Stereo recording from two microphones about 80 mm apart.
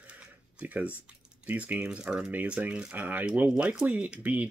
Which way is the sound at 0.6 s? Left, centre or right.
Centre.